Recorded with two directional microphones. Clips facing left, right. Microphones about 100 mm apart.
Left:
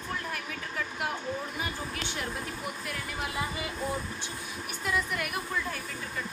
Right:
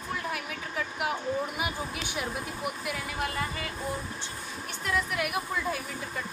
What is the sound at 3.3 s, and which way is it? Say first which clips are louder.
Speech: even; 15° left (ahead or behind).